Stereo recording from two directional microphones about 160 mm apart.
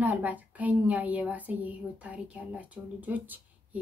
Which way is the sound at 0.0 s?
10° right (ahead or behind).